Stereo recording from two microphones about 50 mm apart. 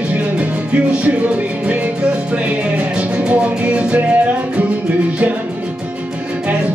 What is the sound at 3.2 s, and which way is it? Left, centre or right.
Music, right.